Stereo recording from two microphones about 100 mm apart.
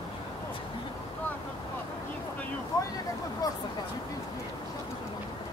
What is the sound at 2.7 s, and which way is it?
Vehicle, 40° left (ahead or behind).